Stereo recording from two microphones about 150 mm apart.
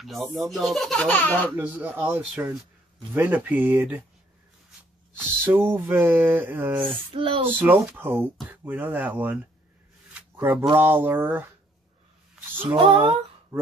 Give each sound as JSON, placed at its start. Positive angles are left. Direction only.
{"t": 0.0, "sound": "speech", "side_deg": 0}
{"t": 1.6, "sound": "speech", "side_deg": -10}
{"t": 5.1, "sound": "speech", "side_deg": -15}
{"t": 7.2, "sound": "speech", "side_deg": -35}
{"t": 7.5, "sound": "speech", "side_deg": -10}
{"t": 12.7, "sound": "speech", "side_deg": -35}